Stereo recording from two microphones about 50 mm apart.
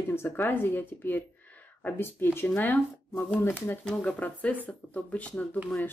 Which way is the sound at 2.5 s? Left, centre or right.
Left.